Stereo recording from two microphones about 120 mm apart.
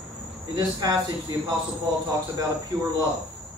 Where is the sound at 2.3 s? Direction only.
30° right (ahead or behind).